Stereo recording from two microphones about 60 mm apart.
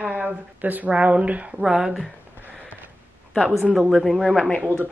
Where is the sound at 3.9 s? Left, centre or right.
Centre.